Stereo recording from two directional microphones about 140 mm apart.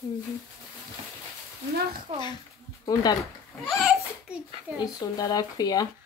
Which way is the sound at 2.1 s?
35° right (ahead or behind).